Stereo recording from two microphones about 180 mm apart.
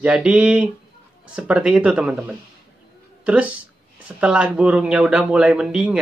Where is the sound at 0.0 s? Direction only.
10° right (ahead or behind).